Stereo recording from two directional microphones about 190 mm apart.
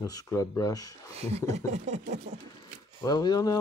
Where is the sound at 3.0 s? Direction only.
20° left (ahead or behind).